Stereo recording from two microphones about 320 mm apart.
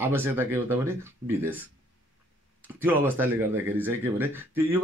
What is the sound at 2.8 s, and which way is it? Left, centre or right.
Speech, centre.